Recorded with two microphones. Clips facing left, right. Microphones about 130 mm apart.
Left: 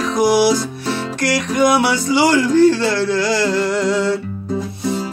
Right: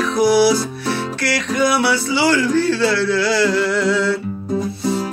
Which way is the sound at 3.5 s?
45° left (ahead or behind).